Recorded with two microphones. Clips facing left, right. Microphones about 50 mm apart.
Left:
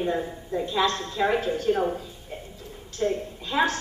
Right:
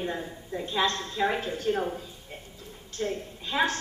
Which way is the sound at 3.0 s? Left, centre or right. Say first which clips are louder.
Left 5 dB; left.